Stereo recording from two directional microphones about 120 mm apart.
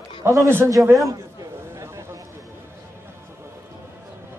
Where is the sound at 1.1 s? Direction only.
25° right (ahead or behind).